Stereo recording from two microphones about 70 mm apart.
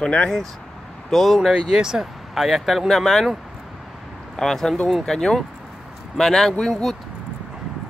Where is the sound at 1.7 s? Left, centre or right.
Centre.